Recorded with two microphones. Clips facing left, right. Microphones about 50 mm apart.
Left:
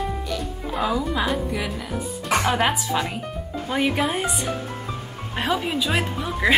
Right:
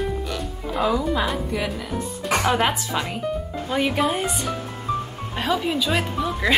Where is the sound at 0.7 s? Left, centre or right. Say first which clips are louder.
Right 2 dB; centre.